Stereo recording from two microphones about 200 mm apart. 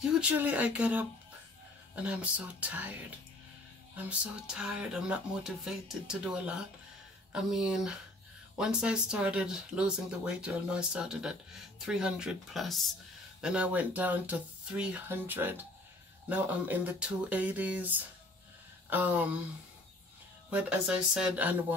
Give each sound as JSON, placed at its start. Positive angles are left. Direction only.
{"t": 0.0, "sound": "speech", "side_deg": -5}
{"t": 20.4, "sound": "speech", "side_deg": -5}